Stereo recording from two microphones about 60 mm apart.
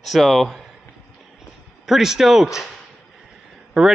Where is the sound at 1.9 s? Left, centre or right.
Centre.